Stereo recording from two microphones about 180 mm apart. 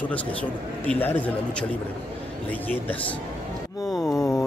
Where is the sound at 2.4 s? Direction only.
10° left (ahead or behind).